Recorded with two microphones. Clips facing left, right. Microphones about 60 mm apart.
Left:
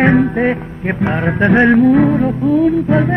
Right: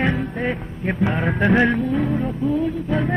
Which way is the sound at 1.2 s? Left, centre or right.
Centre.